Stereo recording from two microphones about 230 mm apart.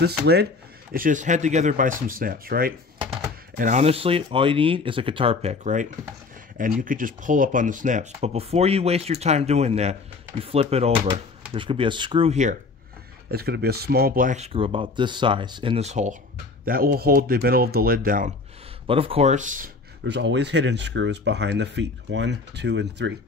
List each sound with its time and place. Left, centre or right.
0.2 s speech: right
13.3 s speech: right
18.9 s speech: right
20.1 s speech: right